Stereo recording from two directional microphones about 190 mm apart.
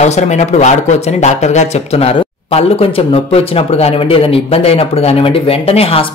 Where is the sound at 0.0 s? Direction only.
35° left (ahead or behind).